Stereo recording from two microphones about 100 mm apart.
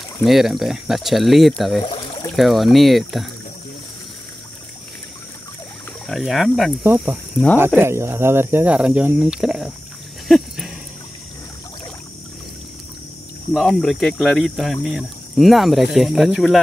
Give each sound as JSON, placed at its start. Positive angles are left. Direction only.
{"t": 0.2, "sound": "speech", "side_deg": 0}
{"t": 6.0, "sound": "speech", "side_deg": 0}
{"t": 6.8, "sound": "speech", "side_deg": -15}
{"t": 8.7, "sound": "speech", "side_deg": -10}
{"t": 10.2, "sound": "a sound", "side_deg": 0}
{"t": 13.7, "sound": "speech", "side_deg": 5}